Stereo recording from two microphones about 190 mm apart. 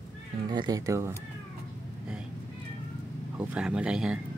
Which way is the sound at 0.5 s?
20° right (ahead or behind).